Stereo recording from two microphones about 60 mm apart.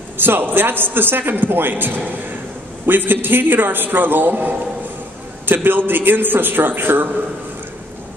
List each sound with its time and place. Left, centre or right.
0.2 s a man's voice: right